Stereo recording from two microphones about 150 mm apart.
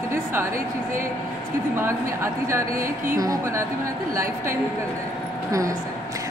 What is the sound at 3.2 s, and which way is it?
Speech, 25° right (ahead or behind).